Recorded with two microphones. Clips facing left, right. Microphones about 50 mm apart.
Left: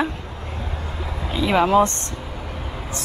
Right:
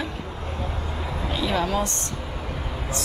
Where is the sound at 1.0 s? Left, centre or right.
Centre.